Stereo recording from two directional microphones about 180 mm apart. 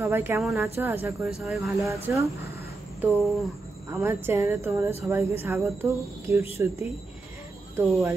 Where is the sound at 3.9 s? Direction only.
15° right (ahead or behind).